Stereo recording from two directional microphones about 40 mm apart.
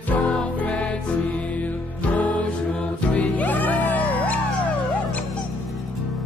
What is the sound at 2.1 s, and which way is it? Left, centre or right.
Music, left.